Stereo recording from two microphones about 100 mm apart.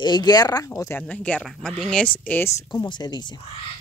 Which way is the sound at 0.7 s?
25° left (ahead or behind).